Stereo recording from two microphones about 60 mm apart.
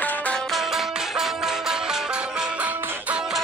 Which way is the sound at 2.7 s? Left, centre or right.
Right.